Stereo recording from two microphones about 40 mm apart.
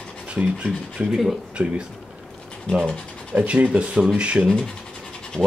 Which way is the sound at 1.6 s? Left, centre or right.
Right.